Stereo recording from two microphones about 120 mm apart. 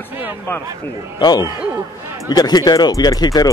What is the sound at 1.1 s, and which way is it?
Speech, 35° left (ahead or behind).